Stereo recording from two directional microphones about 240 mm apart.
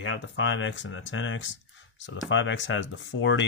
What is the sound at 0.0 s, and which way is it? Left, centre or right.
Speech, left.